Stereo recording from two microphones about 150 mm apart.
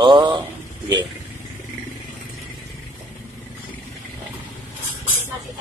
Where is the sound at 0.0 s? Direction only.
30° right (ahead or behind).